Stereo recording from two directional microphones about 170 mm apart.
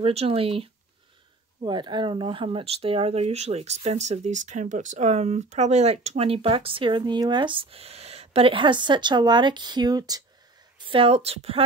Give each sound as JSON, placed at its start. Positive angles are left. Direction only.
{"t": 0.0, "sound": "speech", "side_deg": -35}
{"t": 10.9, "sound": "speech", "side_deg": -35}